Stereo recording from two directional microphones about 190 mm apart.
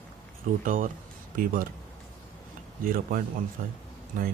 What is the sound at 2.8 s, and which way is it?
Speech, 50° right (ahead or behind).